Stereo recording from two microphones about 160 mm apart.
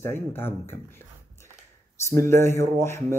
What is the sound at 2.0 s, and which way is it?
Speech, 15° left (ahead or behind).